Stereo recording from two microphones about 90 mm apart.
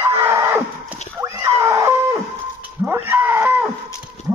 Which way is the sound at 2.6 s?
25° right (ahead or behind).